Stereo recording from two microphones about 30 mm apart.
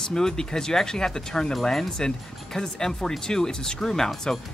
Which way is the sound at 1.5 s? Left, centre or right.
Centre.